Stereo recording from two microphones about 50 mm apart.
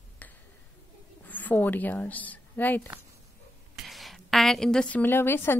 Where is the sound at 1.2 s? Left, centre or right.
Left.